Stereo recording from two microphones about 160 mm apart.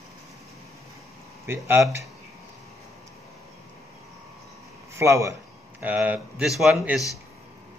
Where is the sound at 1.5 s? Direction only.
15° right (ahead or behind).